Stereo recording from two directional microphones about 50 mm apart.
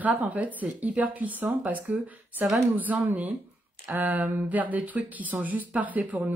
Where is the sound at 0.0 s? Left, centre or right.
Right.